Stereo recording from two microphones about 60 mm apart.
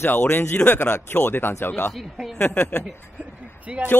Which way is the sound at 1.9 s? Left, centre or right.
Centre.